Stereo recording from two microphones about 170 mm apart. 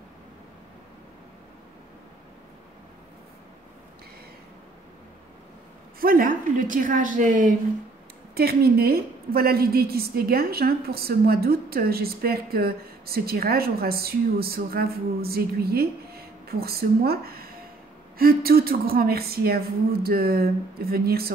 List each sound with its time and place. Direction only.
5.9 s a woman's voice: 55° right (ahead or behind)
8.4 s a woman's voice: 65° right (ahead or behind)